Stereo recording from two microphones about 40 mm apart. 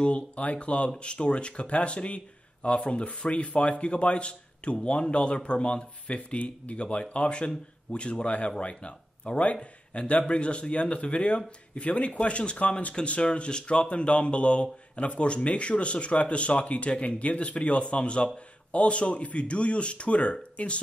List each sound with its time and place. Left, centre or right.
0.0 s speech: left